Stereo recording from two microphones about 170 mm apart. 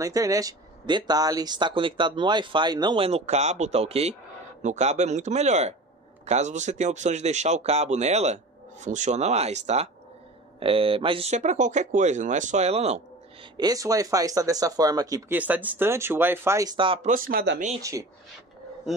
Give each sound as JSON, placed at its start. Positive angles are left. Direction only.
{"t": 0.0, "sound": "speech", "side_deg": -20}
{"t": 13.6, "sound": "speech", "side_deg": -20}
{"t": 15.3, "sound": "speech", "side_deg": -10}
{"t": 16.7, "sound": "speech", "side_deg": -30}
{"t": 17.0, "sound": "speech", "side_deg": -55}